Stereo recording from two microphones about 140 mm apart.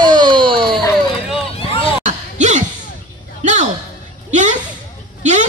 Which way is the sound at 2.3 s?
60° right (ahead or behind).